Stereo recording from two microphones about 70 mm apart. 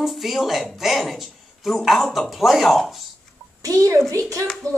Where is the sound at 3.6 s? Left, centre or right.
Right.